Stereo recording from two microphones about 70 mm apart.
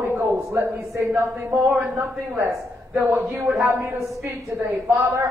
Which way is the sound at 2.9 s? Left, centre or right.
Right.